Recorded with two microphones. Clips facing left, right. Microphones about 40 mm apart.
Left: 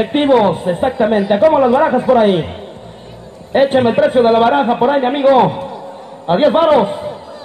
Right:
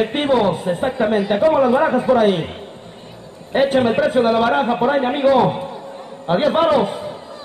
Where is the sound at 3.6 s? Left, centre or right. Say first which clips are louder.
Left 4 dB; left.